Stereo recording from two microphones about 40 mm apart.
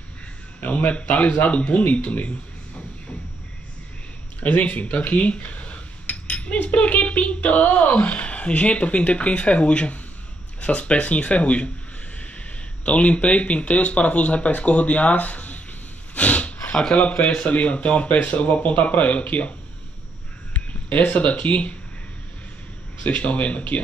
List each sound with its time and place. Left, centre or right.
0.6 s speech: left
4.4 s speech: left
16.2 s a sound: left
16.9 s speech: left
20.5 s speech: left
23.0 s speech: left